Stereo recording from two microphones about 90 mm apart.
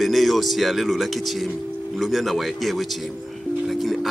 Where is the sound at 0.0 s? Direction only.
Centre (ahead or behind).